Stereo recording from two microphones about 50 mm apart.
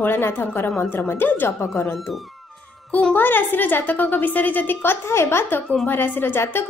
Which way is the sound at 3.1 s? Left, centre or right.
Left.